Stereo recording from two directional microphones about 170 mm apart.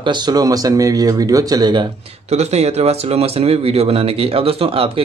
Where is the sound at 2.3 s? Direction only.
40° right (ahead or behind).